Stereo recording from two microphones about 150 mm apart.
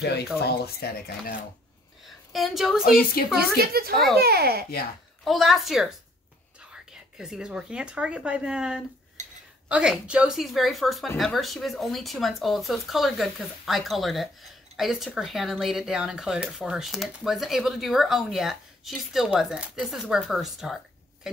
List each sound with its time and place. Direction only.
0.0 s speech: 90° left
2.0 s a sound: centre (ahead or behind)
2.8 s a woman's voice: 80° left
3.3 s a woman's voice: 90° right
3.9 s speech: centre (ahead or behind)
4.2 s a woman's voice: 90° right
5.2 s speech: centre (ahead or behind)
9.2 s a sound: 50° right (ahead or behind)
9.7 s speech: 5° right (ahead or behind)